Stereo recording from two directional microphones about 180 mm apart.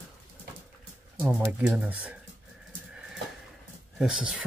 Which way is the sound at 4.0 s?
5° right (ahead or behind).